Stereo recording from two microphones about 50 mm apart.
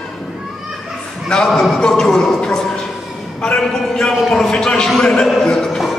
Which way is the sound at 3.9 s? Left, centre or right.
Centre.